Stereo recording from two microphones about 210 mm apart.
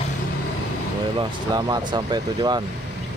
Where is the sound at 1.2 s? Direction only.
20° right (ahead or behind).